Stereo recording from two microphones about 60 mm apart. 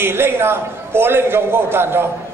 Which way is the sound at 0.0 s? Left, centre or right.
Right.